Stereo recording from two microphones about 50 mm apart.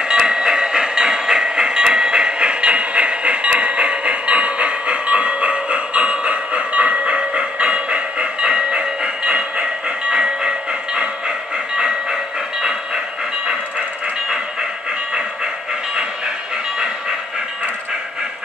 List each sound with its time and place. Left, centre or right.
0.0 s train: centre